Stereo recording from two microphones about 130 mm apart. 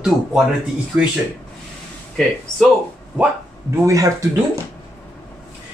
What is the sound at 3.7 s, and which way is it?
Speech, 25° right (ahead or behind).